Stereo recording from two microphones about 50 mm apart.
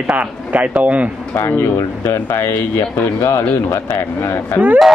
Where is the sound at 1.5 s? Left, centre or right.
Left.